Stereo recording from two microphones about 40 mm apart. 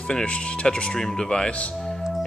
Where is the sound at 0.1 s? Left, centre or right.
Left.